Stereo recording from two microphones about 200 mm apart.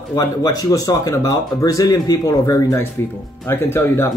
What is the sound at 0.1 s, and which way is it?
Speech, 15° left (ahead or behind).